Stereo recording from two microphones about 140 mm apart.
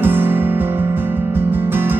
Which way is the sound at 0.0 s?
15° right (ahead or behind).